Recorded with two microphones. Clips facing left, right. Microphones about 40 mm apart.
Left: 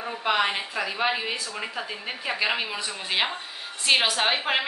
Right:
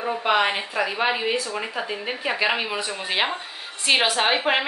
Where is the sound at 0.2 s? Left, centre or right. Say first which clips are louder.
Right 2 dB; centre.